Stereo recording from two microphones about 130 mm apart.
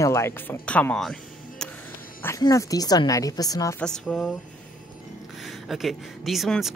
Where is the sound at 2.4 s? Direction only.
25° left (ahead or behind).